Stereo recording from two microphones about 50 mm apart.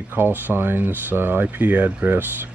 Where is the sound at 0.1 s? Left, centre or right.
Right.